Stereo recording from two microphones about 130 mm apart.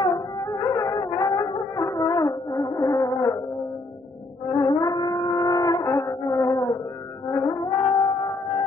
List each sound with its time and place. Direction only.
0.0 s music: 25° left (ahead or behind)
4.5 s a sound: 30° left (ahead or behind)
7.2 s music: 25° left (ahead or behind)